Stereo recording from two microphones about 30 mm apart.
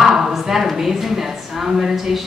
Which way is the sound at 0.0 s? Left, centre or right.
Centre.